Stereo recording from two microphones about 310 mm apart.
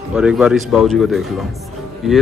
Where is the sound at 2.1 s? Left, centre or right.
Centre.